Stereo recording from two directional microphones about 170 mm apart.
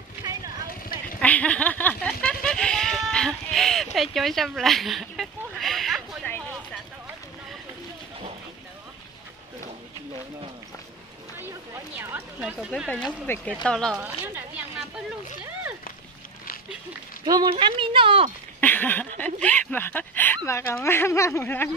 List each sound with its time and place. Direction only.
1.2 s a sound: 10° left (ahead or behind)
12.0 s a woman's voice: 10° right (ahead or behind)
13.9 s a woman's voice: 15° right (ahead or behind)
17.2 s speech: 25° right (ahead or behind)
18.6 s speech: 10° left (ahead or behind)